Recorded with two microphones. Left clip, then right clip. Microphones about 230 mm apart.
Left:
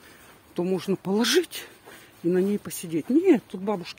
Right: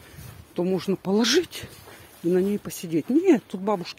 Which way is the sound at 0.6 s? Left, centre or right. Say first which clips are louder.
Right 1 dB; centre.